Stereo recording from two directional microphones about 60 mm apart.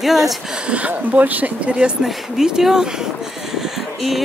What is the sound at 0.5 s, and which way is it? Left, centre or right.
Speech, centre.